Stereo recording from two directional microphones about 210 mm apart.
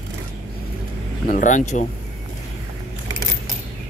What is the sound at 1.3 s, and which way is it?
Speech, 35° left (ahead or behind).